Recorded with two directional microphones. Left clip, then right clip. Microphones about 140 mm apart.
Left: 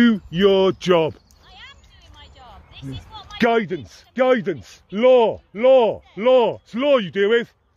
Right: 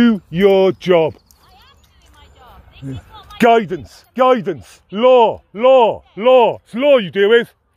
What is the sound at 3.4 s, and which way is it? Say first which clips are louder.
Speech: right 7 dB; 45° right (ahead or behind).